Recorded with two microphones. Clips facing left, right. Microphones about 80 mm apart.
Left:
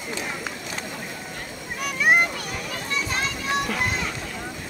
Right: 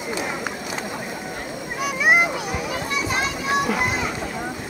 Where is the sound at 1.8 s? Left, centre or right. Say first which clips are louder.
Right 2 dB; centre.